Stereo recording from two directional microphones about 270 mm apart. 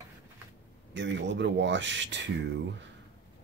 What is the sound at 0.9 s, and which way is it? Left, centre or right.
Speech, right.